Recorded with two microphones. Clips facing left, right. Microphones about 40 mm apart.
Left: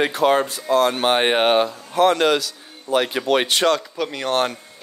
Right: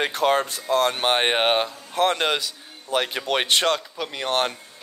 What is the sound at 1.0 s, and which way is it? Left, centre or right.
Speech, left.